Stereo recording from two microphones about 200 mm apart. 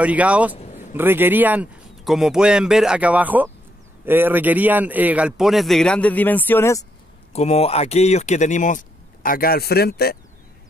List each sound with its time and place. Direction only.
0.0 s a man's voice: 5° right (ahead or behind)
0.6 s a sound: 35° left (ahead or behind)
0.9 s a man's voice: 10° right (ahead or behind); by 6.9 s 15° left (ahead or behind)
7.3 s speech: 30° left (ahead or behind); by 10.1 s 50° left (ahead or behind)